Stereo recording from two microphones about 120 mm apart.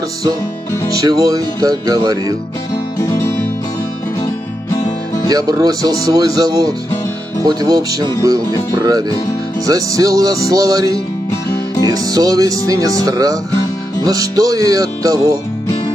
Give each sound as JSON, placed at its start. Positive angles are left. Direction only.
{"t": 1.0, "sound": "speech", "side_deg": -30}
{"t": 3.0, "sound": "music", "side_deg": 30}
{"t": 4.7, "sound": "music", "side_deg": 30}
{"t": 5.3, "sound": "speech", "side_deg": -30}
{"t": 9.7, "sound": "music", "side_deg": -30}